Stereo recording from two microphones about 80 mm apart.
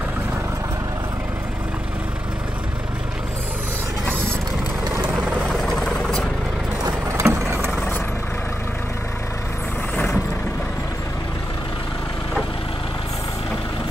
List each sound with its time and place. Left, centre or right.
5.1 s vehicle: centre
5.5 s vehicle: centre
6.9 s vehicle: right